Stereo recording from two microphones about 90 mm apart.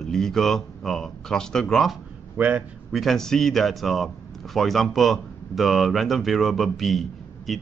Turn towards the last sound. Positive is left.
turn(degrees=0)  # may be behind; listen again after turning